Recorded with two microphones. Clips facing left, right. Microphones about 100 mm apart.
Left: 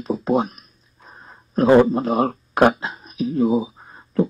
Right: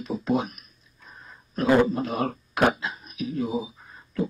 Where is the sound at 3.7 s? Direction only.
40° left (ahead or behind).